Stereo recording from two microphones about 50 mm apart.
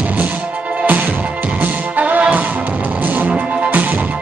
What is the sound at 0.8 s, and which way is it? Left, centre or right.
Music, right.